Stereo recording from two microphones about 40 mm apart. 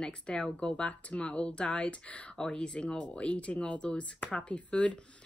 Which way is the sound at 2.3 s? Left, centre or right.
Left.